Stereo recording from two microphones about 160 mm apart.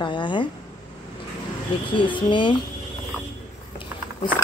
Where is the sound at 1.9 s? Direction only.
30° left (ahead or behind).